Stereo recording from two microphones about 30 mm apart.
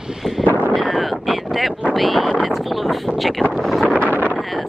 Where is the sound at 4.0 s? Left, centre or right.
Left.